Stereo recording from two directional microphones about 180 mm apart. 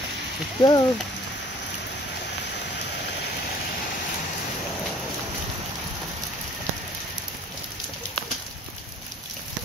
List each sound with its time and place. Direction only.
0.6 s speech: 25° left (ahead or behind)